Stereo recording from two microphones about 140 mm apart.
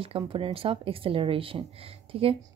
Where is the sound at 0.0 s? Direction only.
40° right (ahead or behind).